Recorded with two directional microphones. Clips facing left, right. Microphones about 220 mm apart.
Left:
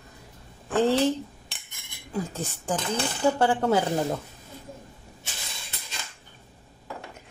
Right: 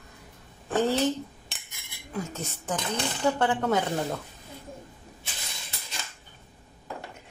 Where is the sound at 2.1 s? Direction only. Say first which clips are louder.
Left 3 dB; 30° left (ahead or behind).